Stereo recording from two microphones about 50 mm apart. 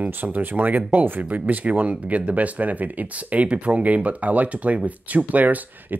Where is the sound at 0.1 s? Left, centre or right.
Right.